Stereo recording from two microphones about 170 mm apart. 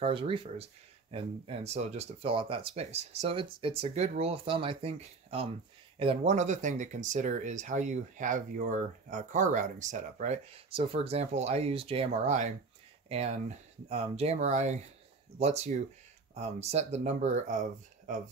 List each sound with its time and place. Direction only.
0.0 s speech: 30° right (ahead or behind); by 18.3 s 50° right (ahead or behind)